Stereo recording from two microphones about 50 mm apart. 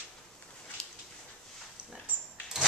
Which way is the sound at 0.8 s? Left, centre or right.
Centre.